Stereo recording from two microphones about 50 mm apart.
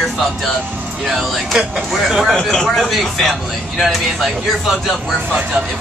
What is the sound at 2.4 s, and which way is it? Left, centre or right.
Speech, centre.